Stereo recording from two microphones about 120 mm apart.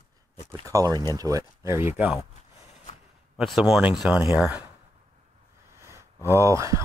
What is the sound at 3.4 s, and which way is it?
Speech, centre (ahead or behind).